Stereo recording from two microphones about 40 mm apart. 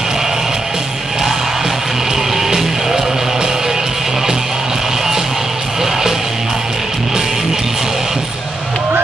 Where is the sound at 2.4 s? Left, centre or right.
Centre.